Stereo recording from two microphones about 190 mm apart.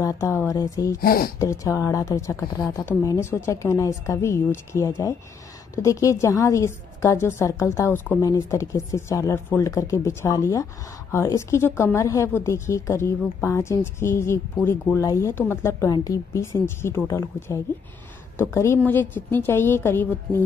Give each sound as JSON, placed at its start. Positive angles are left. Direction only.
{"t": 0.0, "sound": "a woman's voice", "side_deg": 15}
{"t": 1.0, "sound": "speech", "side_deg": 50}
{"t": 1.4, "sound": "a woman's voice", "side_deg": 15}